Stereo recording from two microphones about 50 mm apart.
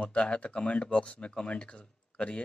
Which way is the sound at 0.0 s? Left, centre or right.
Left.